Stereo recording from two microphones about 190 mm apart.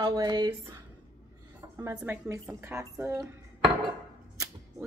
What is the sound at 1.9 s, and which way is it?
Speech, 15° right (ahead or behind).